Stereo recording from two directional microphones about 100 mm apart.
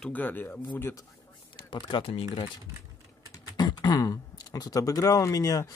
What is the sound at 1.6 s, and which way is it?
Speech, 50° left (ahead or behind).